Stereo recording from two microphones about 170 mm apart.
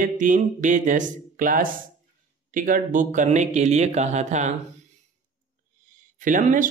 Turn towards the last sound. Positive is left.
turn(degrees=-50)  # may be behind; listen again after turning